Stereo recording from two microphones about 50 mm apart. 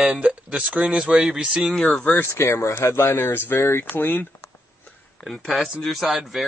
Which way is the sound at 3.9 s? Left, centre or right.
Left.